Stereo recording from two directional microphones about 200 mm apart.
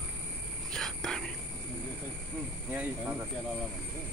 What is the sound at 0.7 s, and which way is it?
Whispering, 5° left (ahead or behind).